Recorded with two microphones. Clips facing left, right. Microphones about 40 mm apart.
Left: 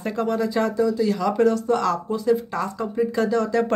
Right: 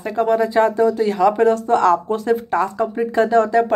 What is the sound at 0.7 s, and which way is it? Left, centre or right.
Speech, right.